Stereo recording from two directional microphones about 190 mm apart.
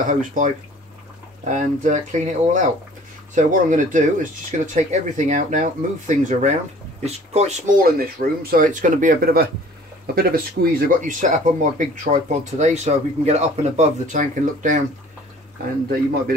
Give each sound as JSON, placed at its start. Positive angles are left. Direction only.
{"t": 0.1, "sound": "speech", "side_deg": -40}
{"t": 1.5, "sound": "speech", "side_deg": -40}